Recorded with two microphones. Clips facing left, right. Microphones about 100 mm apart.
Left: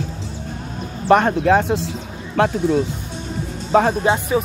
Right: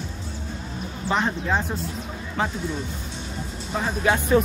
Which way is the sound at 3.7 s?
60° left (ahead or behind).